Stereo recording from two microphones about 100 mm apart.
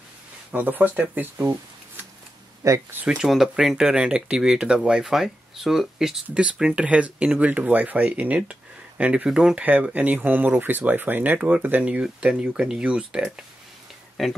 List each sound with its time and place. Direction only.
0.5 s speech: 20° right (ahead or behind)
2.6 s speech: 35° right (ahead or behind)
3.1 s speech: 5° right (ahead or behind)